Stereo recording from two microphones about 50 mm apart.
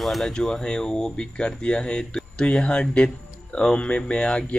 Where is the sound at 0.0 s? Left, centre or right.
Centre.